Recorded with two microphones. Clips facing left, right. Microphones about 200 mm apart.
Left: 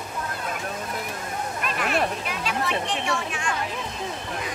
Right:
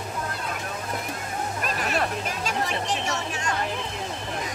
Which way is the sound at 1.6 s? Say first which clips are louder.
Left 2 dB; 40° right (ahead or behind).